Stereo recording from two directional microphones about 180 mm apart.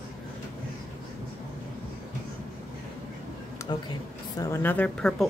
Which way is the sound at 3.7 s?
25° left (ahead or behind).